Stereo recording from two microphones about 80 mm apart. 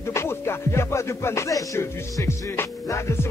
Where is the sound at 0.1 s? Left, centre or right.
Left.